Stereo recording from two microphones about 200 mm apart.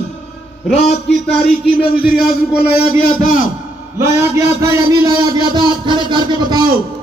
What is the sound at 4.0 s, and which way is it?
A man's voice, 15° right (ahead or behind).